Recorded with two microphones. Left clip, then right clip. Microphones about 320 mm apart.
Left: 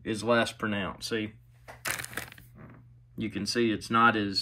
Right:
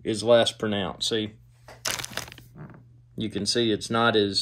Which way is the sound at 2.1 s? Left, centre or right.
Right.